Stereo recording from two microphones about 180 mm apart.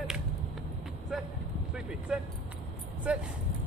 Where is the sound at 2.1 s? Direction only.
5° right (ahead or behind).